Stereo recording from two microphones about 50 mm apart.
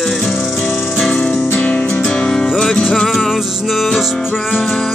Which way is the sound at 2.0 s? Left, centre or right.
Centre.